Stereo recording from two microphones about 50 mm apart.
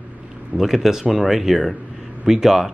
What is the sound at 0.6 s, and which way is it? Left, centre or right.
Speech, centre.